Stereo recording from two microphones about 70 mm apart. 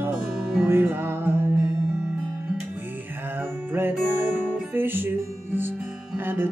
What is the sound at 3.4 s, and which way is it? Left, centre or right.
Music, right.